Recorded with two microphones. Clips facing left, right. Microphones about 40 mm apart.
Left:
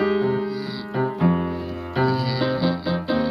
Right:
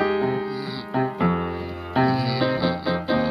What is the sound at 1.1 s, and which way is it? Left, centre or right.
Music, right.